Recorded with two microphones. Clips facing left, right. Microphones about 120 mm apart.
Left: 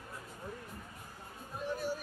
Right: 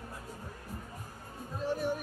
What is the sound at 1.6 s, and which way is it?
Speech, 65° right (ahead or behind).